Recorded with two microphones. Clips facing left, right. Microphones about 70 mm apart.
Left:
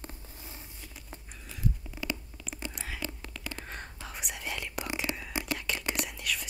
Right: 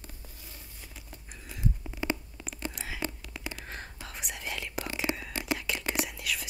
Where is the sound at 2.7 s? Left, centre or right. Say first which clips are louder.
Right 3 dB; centre.